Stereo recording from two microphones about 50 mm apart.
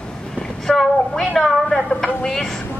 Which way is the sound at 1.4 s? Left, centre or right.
Centre.